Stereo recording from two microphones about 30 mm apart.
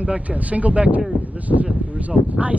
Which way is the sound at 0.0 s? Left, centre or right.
Right.